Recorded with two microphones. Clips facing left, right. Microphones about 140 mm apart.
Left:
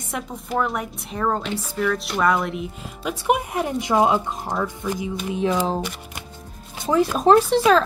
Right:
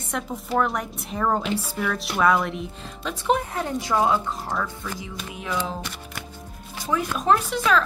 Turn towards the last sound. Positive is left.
turn(degrees=35)  # may be behind; listen again after turning